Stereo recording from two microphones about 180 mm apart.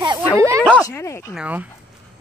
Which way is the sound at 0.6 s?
10° left (ahead or behind).